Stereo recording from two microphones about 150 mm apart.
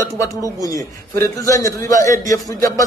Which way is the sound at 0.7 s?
20° left (ahead or behind).